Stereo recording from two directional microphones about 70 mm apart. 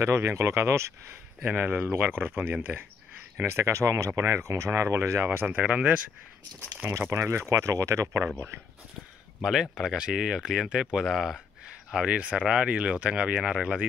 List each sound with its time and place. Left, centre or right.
0.0 s speech: right
1.4 s speech: right
5.2 s speech: right
6.9 s speech: right
9.4 s speech: centre
11.9 s speech: centre